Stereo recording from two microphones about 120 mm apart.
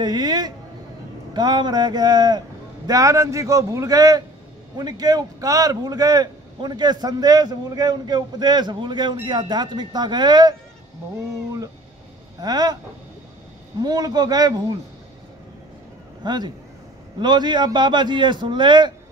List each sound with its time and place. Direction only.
0.0 s a man's voice: 35° right (ahead or behind)
12.4 s a man's voice: 35° right (ahead or behind)
13.7 s a man's voice: 35° right (ahead or behind)
16.2 s a man's voice: 35° right (ahead or behind)